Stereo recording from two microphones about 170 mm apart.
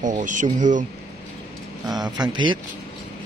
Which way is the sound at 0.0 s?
50° right (ahead or behind).